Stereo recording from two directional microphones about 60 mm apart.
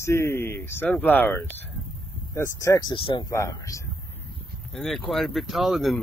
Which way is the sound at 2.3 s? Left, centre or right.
Left.